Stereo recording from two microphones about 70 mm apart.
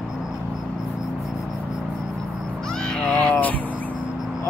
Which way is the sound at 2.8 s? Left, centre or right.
Centre.